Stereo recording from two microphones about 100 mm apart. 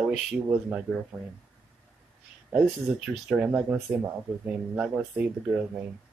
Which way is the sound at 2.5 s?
5° right (ahead or behind).